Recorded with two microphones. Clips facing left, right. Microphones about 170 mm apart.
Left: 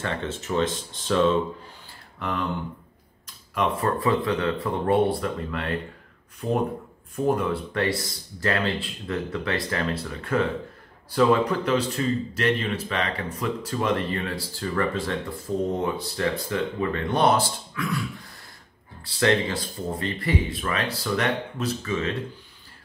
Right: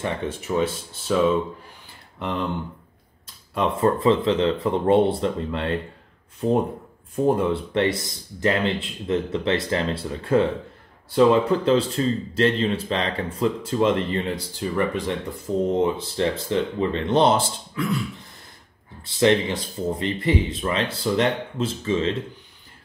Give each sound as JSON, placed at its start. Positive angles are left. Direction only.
{"t": 0.0, "sound": "speech", "side_deg": -15}
{"t": 2.1, "sound": "speech", "side_deg": -25}
{"t": 3.5, "sound": "speech", "side_deg": -25}